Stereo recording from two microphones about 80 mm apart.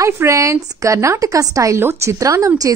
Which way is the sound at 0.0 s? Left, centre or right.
Right.